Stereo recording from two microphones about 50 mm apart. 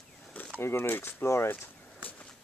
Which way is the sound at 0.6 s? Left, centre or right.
Left.